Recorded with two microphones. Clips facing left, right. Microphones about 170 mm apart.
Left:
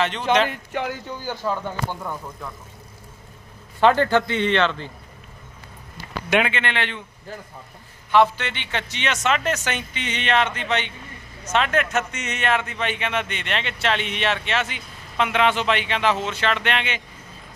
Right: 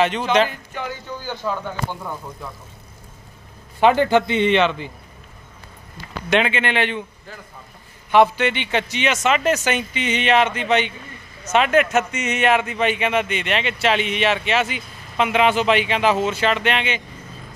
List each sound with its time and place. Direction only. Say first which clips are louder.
0.0 s speech: right 2 dB; 10° right (ahead or behind)
0.5 s speech: left 3 dB; 65° left (ahead or behind)
1.2 s speech: even; 10° left (ahead or behind)
3.8 s speech: right 2 dB; 15° right (ahead or behind)
6.3 s a man's voice: right 2 dB; centre (ahead or behind)
6.6 s speech: right 5 dB; 10° right (ahead or behind)
8.1 s speech: right 3 dB; 15° right (ahead or behind)